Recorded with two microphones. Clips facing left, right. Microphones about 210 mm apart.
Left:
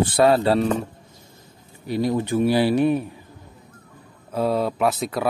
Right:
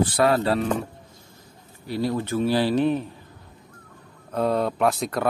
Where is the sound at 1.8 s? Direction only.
15° left (ahead or behind).